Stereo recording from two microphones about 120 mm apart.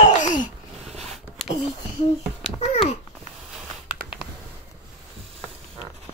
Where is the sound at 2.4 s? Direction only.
55° left (ahead or behind).